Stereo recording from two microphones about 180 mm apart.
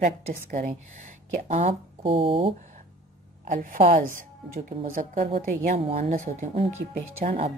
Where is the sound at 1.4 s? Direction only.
35° right (ahead or behind).